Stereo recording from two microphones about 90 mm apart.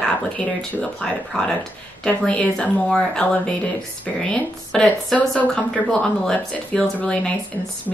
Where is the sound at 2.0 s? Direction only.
10° left (ahead or behind).